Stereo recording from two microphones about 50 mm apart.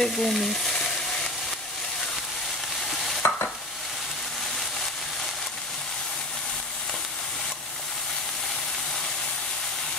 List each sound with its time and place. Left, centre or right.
0.0 s frying: centre
3.2 s stir: left